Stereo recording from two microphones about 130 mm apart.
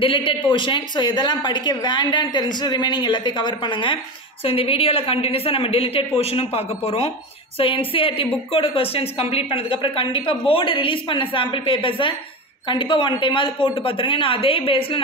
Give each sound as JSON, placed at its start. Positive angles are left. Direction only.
{"t": 0.0, "sound": "a woman's voice", "side_deg": 40}